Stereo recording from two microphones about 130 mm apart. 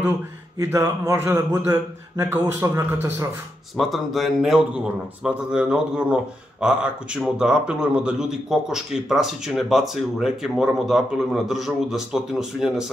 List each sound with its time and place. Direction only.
0.6 s a man's voice: 20° right (ahead or behind)
3.7 s a man's voice: centre (ahead or behind)